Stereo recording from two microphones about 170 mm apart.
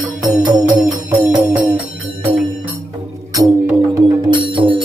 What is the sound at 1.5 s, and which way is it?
Music, 20° right (ahead or behind).